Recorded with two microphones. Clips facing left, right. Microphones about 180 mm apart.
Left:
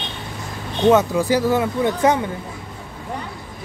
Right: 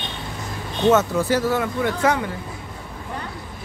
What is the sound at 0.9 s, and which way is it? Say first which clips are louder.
Speech: left 2 dB; 15° left (ahead or behind).